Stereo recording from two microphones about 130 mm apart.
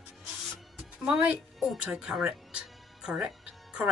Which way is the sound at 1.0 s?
10° right (ahead or behind).